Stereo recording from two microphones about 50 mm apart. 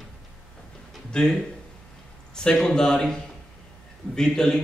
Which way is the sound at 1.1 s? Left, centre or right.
Centre.